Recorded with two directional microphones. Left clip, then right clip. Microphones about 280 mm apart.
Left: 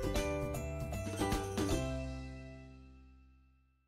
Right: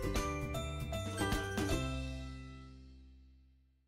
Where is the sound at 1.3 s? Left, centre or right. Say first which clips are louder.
Left 1 dB; centre.